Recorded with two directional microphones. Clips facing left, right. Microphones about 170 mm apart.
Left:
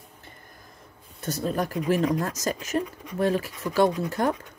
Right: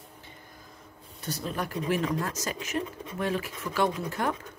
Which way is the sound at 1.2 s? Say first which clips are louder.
Left 6 dB; 45° left (ahead or behind).